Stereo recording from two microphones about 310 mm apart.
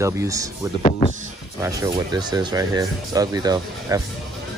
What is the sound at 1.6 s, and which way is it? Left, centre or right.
Speech, centre.